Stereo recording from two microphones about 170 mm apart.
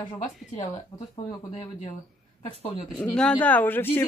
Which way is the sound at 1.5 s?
35° left (ahead or behind).